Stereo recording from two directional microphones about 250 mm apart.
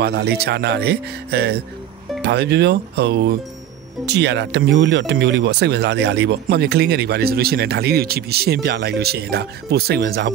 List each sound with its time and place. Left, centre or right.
0.0 s speech: right